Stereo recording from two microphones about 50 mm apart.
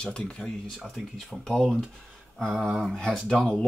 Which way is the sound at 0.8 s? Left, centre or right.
Centre.